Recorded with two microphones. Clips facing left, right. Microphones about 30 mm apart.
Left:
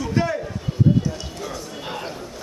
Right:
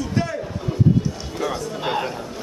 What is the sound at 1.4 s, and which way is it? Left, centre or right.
Speech, right.